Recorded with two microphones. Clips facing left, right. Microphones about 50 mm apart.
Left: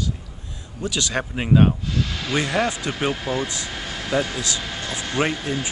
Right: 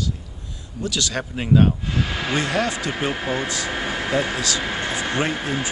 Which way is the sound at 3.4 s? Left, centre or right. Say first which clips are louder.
Right 5 dB; right.